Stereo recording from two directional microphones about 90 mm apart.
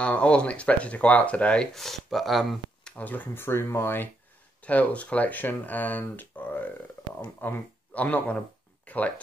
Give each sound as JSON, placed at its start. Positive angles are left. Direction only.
{"t": 0.0, "sound": "speech", "side_deg": 15}
{"t": 2.8, "sound": "speech", "side_deg": 20}
{"t": 8.8, "sound": "a sound", "side_deg": 15}